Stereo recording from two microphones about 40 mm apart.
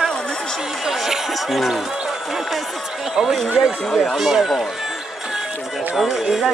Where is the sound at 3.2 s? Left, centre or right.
Centre.